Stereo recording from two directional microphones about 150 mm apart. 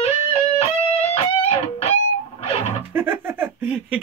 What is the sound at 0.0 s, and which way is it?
Music, 45° left (ahead or behind).